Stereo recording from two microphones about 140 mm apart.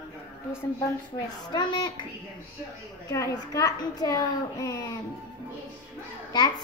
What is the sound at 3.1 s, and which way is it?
A child's voice, 25° left (ahead or behind).